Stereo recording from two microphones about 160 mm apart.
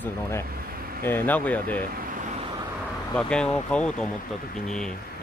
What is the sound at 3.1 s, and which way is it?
Speech, 5° left (ahead or behind).